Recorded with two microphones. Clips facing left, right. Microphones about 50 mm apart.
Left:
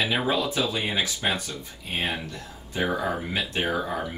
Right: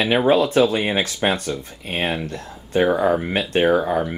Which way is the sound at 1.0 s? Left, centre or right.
Right.